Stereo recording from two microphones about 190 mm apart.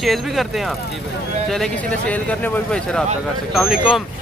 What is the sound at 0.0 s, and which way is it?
Speech, centre (ahead or behind).